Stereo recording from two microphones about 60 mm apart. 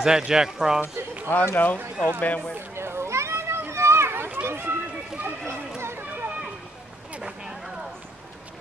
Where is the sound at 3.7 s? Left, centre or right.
Right.